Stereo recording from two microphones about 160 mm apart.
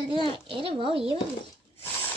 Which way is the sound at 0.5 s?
35° right (ahead or behind).